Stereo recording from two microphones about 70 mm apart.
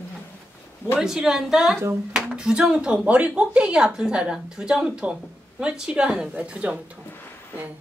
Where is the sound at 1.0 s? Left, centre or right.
Centre.